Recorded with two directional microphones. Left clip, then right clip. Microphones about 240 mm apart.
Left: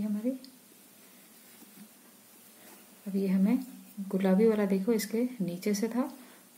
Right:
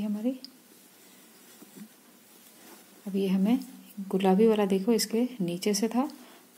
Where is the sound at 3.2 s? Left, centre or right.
Right.